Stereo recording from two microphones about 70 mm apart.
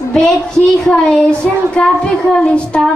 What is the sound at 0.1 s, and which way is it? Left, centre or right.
Speech, centre.